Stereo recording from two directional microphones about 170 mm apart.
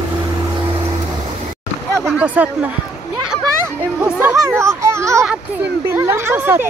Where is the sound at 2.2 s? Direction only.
10° right (ahead or behind).